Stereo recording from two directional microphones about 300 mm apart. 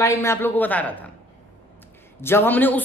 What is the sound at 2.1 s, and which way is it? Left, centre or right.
Speech, centre.